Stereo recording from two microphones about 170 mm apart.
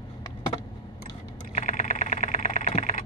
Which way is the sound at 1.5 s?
45° left (ahead or behind).